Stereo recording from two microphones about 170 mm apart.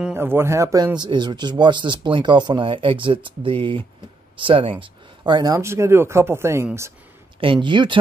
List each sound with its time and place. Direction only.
0.0 s speech: 10° right (ahead or behind)
7.3 s speech: 30° right (ahead or behind)